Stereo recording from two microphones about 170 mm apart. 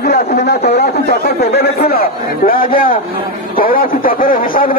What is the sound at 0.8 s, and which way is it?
Chatter, 70° left (ahead or behind).